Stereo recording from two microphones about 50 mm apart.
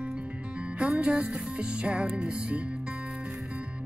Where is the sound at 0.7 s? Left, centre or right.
Right.